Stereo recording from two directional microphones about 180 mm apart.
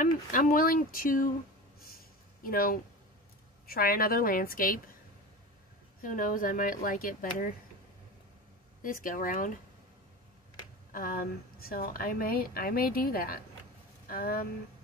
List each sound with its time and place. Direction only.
0.0 s a woman's voice: 50° left (ahead or behind)
2.4 s a woman's voice: 55° left (ahead or behind)
5.9 s a woman's voice: 50° left (ahead or behind)
8.8 s a woman's voice: 50° left (ahead or behind)
10.9 s a woman's voice: 50° left (ahead or behind)